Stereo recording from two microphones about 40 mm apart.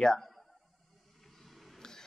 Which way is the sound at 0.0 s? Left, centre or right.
Centre.